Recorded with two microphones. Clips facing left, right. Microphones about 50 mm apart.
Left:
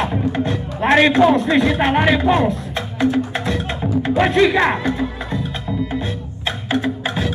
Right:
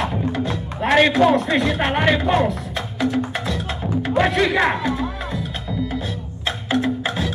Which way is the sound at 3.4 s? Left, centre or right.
Left.